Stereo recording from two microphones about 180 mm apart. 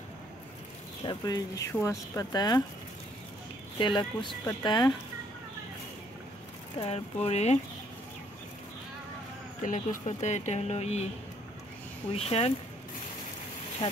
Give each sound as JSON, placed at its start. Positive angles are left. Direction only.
{"t": 1.0, "sound": "speech", "side_deg": 20}
{"t": 3.7, "sound": "speech", "side_deg": 25}
{"t": 6.8, "sound": "speech", "side_deg": 35}
{"t": 9.6, "sound": "speech", "side_deg": 45}
{"t": 12.1, "sound": "speech", "side_deg": 35}